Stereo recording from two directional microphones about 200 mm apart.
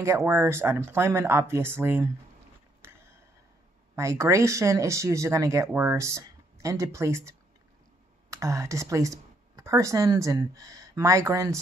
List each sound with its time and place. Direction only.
0.0 s speech: 15° right (ahead or behind)
2.8 s a sound: 10° right (ahead or behind)
3.9 s speech: 15° right (ahead or behind)